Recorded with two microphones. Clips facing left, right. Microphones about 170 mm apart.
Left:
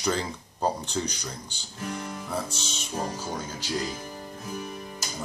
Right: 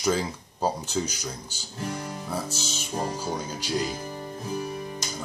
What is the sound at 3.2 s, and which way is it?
Speech, 10° right (ahead or behind).